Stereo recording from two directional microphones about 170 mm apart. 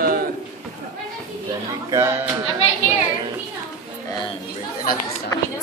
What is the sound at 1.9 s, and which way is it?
Speech, 15° right (ahead or behind).